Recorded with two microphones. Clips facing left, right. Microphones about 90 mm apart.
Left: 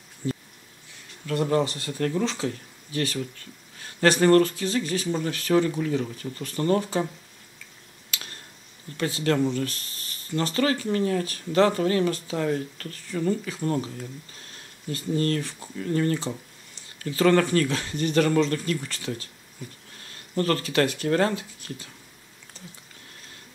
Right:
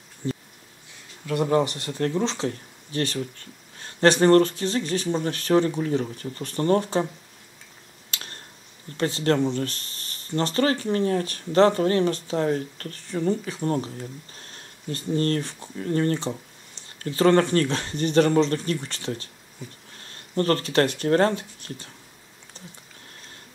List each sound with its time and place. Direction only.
1.2 s speech: 20° right (ahead or behind)
8.1 s a sound: 35° right (ahead or behind)
8.9 s speech: 35° right (ahead or behind)
20.3 s speech: 35° right (ahead or behind)